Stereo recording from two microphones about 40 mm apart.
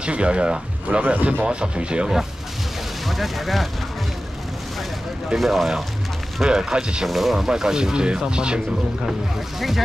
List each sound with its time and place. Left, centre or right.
0.0 s speech: right
1.0 s speech: right
3.1 s speech: centre
5.4 s speech: centre
6.4 s speech: centre
7.1 s speech: centre
7.4 s speech: centre
9.6 s speech: centre